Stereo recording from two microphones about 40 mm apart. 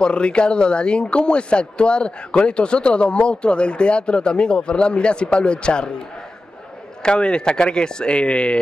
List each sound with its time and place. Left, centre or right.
0.0 s speech: left